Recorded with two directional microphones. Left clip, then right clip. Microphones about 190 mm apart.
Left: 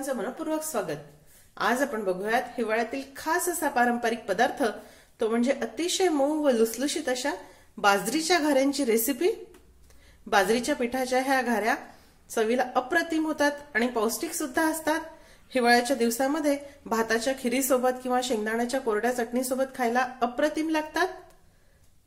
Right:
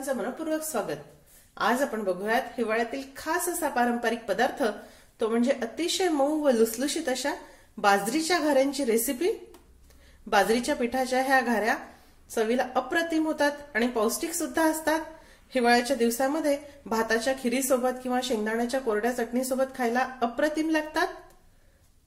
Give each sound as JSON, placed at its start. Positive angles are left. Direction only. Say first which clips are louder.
{"t": 0.0, "sound": "a woman's voice", "louder": "even", "side_deg": 15}
{"t": 7.8, "sound": "a woman's voice", "louder": "even", "side_deg": 15}
{"t": 10.3, "sound": "a woman's voice", "louder": "even", "side_deg": 15}